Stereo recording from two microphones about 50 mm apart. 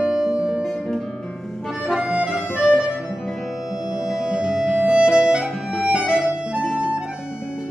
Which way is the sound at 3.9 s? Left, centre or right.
Centre.